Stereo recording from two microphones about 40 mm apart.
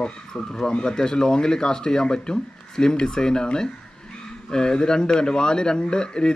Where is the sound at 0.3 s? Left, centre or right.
Centre.